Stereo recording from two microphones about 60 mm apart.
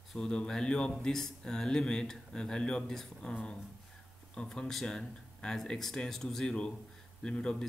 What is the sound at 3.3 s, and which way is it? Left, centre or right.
Speech, left.